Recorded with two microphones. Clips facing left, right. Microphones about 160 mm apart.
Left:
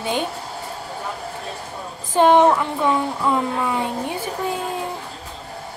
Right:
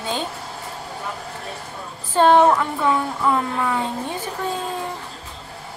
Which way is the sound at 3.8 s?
10° left (ahead or behind).